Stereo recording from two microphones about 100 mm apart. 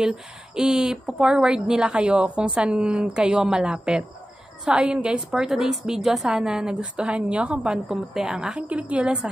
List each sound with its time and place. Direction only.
0.6 s a woman's voice: 5° right (ahead or behind)